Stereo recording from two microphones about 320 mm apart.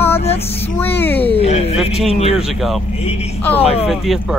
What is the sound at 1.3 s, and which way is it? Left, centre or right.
Speech, centre.